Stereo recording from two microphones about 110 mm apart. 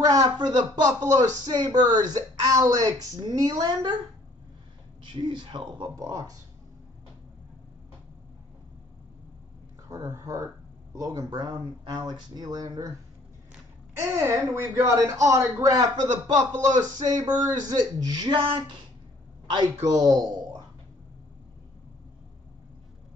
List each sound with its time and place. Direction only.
0.0 s speech: 35° right (ahead or behind)
5.1 s speech: 45° right (ahead or behind)
5.9 s speech: 30° right (ahead or behind)
9.8 s speech: 35° right (ahead or behind)
13.9 s speech: 25° right (ahead or behind)
18.3 s speech: 50° right (ahead or behind)
19.7 s speech: 35° right (ahead or behind)